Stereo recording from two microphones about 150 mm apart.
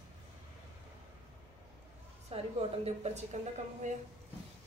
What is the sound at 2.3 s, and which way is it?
A woman's voice, 40° right (ahead or behind).